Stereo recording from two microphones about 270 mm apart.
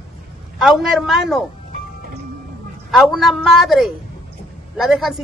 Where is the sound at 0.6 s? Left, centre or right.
Centre.